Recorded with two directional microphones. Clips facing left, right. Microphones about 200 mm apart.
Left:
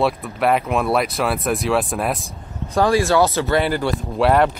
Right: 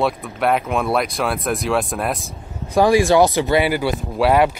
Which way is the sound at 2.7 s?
15° right (ahead or behind).